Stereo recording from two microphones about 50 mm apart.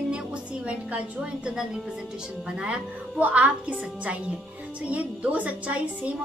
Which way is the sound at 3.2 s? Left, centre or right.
Right.